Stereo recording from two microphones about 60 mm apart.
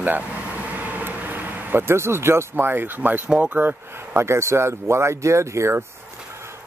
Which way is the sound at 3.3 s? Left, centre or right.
Right.